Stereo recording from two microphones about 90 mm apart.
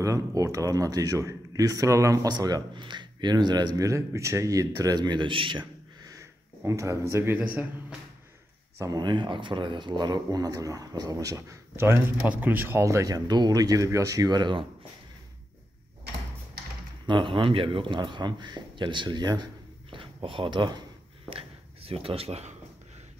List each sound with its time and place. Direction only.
0.0 s speech: 35° right (ahead or behind)
2.3 s speech: 50° right (ahead or behind); by 5.7 s 70° right (ahead or behind)
6.0 s a sound: 35° right (ahead or behind)
8.7 s speech: 40° right (ahead or behind)
9.0 s speech: 65° right (ahead or behind); by 12.8 s 20° right (ahead or behind)
12.8 s speech: 40° right (ahead or behind); by 14.7 s 65° right (ahead or behind)
17.0 s a man's voice: 60° right (ahead or behind)
19.9 s speech: 70° right (ahead or behind)
21.3 s a sound: 90° right